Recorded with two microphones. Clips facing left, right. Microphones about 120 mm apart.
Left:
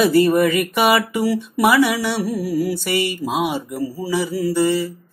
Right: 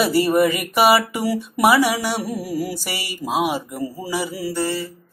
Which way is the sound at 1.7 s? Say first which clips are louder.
Left 1 dB; 35° right (ahead or behind).